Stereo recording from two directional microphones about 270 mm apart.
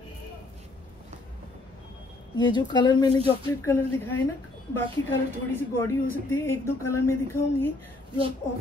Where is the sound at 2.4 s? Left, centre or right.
Centre.